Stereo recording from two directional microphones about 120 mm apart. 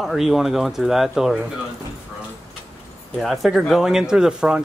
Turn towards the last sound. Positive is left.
turn(degrees=-5)  # may be behind; listen again after turning